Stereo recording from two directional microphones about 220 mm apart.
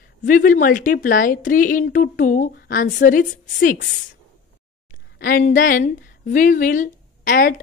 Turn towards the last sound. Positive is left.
turn(degrees=40)  # may be behind; listen again after turning